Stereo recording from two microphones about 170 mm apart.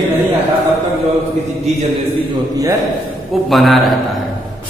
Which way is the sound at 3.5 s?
Centre (ahead or behind).